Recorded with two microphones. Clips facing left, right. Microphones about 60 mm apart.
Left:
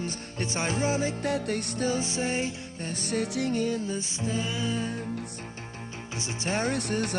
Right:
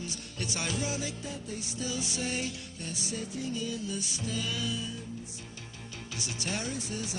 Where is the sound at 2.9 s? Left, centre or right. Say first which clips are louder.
Left 9 dB; left.